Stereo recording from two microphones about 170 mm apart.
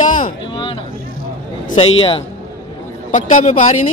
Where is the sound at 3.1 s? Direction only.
45° left (ahead or behind).